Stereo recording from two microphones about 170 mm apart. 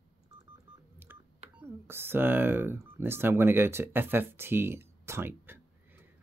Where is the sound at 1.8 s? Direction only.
15° right (ahead or behind).